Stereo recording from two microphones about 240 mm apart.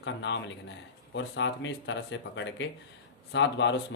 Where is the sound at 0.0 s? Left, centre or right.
Left.